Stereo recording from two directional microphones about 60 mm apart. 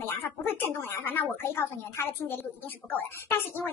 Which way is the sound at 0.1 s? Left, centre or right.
Left.